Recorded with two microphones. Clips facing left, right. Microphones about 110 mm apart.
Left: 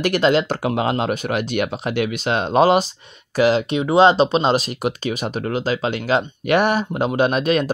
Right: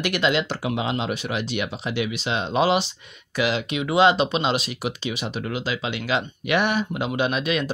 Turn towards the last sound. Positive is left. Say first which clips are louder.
# left 6 dB
turn(degrees=45)  # may be behind; listen again after turning